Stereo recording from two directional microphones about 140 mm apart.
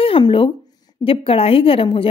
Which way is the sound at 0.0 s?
40° left (ahead or behind).